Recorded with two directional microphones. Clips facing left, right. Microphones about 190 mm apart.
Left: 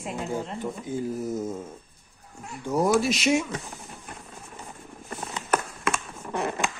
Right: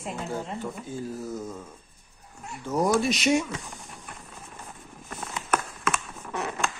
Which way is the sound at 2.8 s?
Centre (ahead or behind).